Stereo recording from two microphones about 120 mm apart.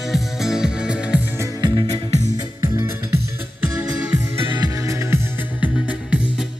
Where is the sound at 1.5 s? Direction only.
35° right (ahead or behind).